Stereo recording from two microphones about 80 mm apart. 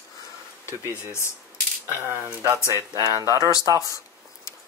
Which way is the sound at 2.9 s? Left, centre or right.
Right.